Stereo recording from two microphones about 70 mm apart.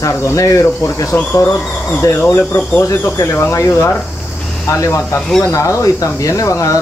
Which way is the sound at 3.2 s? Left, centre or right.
Left.